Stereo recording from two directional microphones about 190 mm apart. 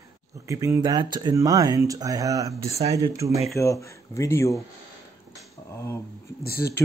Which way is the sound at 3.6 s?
15° left (ahead or behind).